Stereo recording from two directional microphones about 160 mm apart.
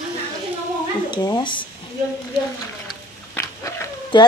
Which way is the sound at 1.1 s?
25° left (ahead or behind).